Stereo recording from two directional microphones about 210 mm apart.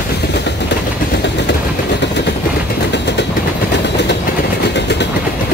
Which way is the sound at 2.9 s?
55° left (ahead or behind).